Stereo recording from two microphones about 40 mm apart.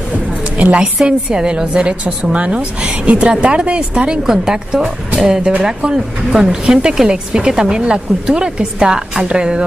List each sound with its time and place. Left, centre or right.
0.6 s a woman's voice: right
4.2 s a woman's voice: centre